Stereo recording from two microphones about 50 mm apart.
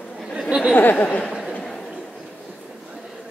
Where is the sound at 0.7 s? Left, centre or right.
Left.